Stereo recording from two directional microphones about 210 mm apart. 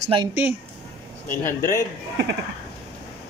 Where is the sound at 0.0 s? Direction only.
25° right (ahead or behind).